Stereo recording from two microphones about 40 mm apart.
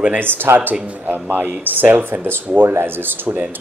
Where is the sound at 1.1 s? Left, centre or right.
Right.